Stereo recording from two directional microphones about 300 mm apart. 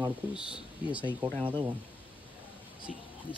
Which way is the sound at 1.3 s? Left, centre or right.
Centre.